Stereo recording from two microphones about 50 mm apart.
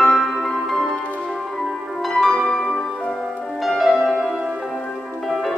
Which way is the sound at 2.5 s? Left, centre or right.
Centre.